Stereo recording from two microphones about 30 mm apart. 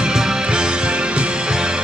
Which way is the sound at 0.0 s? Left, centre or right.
Right.